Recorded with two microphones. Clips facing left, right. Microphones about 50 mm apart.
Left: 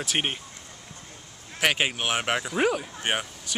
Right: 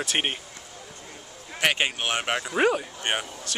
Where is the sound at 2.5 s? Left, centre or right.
Centre.